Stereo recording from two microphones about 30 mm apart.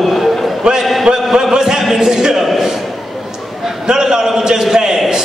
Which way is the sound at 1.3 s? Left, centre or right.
Centre.